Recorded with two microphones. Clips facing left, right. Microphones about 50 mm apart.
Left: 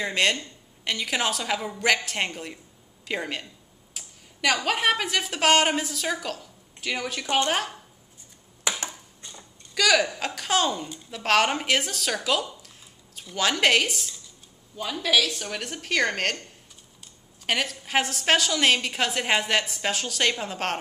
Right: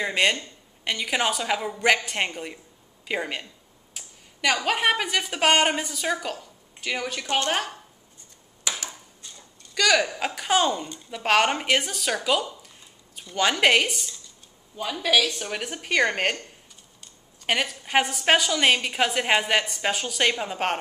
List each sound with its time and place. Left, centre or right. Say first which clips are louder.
0.0 s a woman's voice: right 1 dB; centre
8.6 s a sound: left 2 dB; left
9.8 s a woman's voice: even; centre
17.5 s a woman's voice: right 1 dB; centre